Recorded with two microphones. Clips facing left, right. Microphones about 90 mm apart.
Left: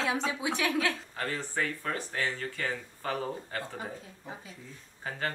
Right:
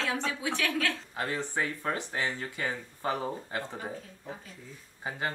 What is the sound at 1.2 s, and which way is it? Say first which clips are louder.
Speech: right 3 dB; 20° right (ahead or behind).